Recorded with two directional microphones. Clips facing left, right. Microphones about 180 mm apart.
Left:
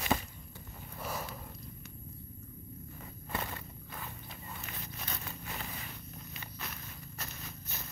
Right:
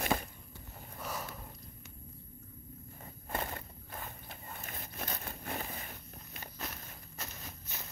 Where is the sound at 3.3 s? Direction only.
45° right (ahead or behind).